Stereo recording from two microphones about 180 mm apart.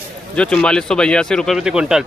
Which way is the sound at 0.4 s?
5° left (ahead or behind).